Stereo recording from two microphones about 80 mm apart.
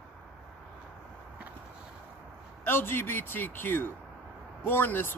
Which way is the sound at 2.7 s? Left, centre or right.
Left.